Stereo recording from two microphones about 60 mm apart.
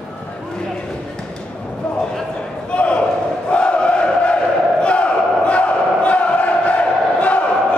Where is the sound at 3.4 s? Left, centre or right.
Centre.